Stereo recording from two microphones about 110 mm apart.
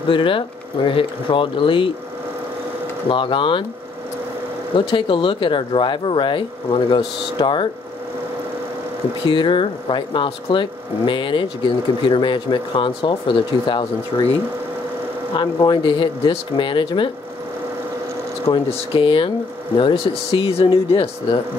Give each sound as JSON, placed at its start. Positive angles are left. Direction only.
{"t": 0.1, "sound": "speech", "side_deg": 50}
{"t": 3.1, "sound": "speech", "side_deg": 50}
{"t": 4.7, "sound": "speech", "side_deg": 50}
{"t": 9.2, "sound": "speech", "side_deg": 45}
{"t": 15.3, "sound": "speech", "side_deg": 45}
{"t": 18.7, "sound": "speech", "side_deg": 50}